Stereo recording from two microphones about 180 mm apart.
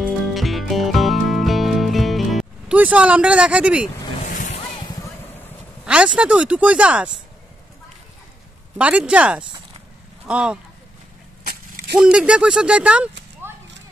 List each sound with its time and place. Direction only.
0.0 s music: centre (ahead or behind)
4.2 s a sound: 45° left (ahead or behind)
5.9 s speech: 5° right (ahead or behind)
8.7 s speech: 5° right (ahead or behind)
12.0 s speech: 5° right (ahead or behind)